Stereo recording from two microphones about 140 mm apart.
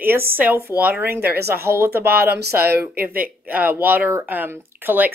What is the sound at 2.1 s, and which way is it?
Speech, 90° right.